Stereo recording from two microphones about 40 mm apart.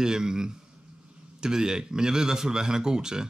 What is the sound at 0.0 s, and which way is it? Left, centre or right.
Speech, centre.